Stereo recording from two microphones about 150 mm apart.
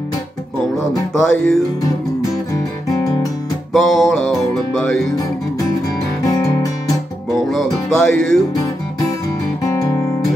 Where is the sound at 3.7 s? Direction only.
5° left (ahead or behind).